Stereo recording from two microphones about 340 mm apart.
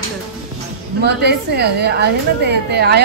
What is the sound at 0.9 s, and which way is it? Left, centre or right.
A woman's voice, right.